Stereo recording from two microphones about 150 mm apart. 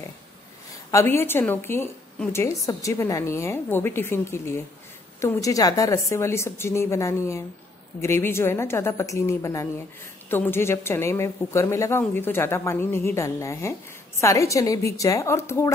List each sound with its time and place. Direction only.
0.9 s a woman's voice: 15° left (ahead or behind)